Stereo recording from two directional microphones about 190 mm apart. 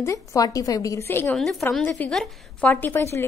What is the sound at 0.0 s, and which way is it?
A woman's voice, 15° left (ahead or behind).